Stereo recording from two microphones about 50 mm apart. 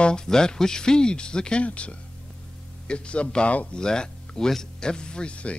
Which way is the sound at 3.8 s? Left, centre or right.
Centre.